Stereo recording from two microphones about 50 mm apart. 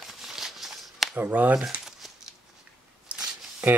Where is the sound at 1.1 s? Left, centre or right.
Right.